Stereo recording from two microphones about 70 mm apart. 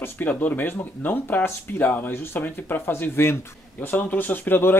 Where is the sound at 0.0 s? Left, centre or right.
Left.